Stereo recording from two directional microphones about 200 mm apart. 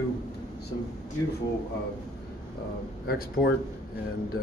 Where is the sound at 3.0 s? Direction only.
50° left (ahead or behind).